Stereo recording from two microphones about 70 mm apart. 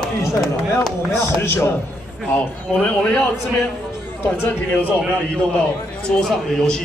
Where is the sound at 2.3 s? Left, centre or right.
Left.